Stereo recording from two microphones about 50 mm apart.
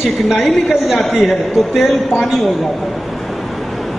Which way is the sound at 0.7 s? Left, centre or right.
Centre.